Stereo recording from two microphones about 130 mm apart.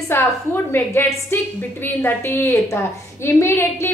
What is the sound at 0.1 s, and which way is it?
A woman's voice, 15° left (ahead or behind).